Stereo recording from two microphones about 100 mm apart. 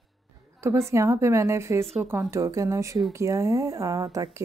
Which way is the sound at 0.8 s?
30° right (ahead or behind).